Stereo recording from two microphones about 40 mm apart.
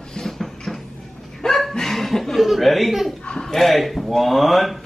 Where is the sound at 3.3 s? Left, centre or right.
Left.